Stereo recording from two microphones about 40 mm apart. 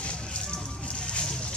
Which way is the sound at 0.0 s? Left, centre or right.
Left.